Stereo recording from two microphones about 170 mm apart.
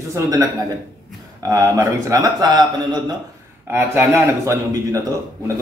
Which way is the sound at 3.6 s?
10° right (ahead or behind).